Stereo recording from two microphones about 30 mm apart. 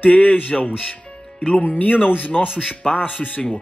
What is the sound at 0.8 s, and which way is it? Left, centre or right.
Speech, left.